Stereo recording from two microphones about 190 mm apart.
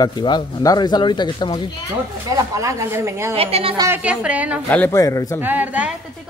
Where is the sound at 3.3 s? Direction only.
30° right (ahead or behind).